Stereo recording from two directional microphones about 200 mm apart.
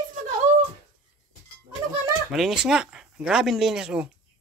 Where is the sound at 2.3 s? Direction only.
Centre (ahead or behind).